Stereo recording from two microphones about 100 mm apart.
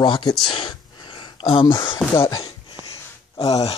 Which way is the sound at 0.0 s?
50° left (ahead or behind).